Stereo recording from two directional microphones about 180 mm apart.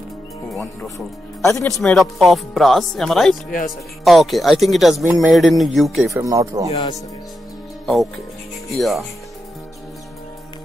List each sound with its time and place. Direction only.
0.9 s speech: 15° left (ahead or behind)
1.8 s speech: centre (ahead or behind)
6.1 s speech: 15° right (ahead or behind)
7.8 s speech: centre (ahead or behind)